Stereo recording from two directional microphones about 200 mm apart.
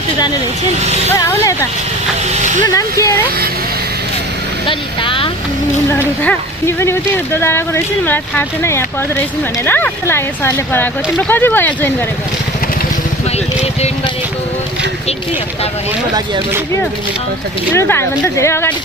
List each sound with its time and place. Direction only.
1.1 s speech: 15° left (ahead or behind)
2.7 s speech: 15° left (ahead or behind)
4.6 s vehicle: 25° left (ahead or behind)
5.9 s speech: 10° left (ahead or behind)
17.7 s speech: 10° left (ahead or behind)